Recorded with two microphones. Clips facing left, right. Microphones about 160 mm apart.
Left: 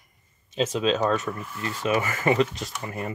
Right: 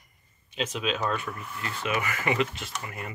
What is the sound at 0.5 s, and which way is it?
Speech, 40° left (ahead or behind).